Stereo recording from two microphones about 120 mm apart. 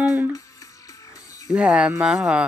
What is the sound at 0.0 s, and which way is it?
Music, 10° right (ahead or behind).